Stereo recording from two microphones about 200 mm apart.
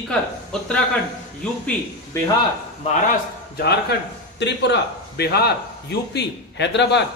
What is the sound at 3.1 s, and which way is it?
A man's voice, 55° left (ahead or behind).